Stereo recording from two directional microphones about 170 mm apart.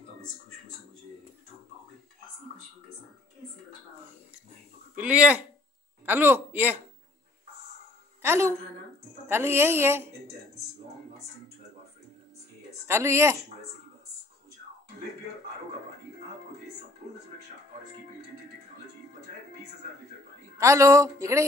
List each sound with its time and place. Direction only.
4.9 s speech: 10° right (ahead or behind)
8.2 s a woman's voice: 15° right (ahead or behind)
12.8 s speech: 15° right (ahead or behind)
20.5 s speech: 20° right (ahead or behind)